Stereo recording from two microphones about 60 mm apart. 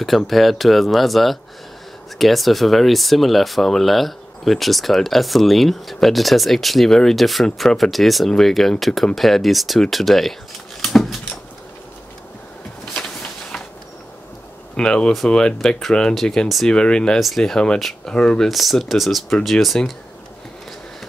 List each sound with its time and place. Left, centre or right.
0.0 s speech: centre
10.8 s dog: centre
12.9 s a sound: centre
14.8 s speech: centre
16.6 s speech: centre
17.2 s speech: centre
18.1 s speech: centre
18.5 s speech: centre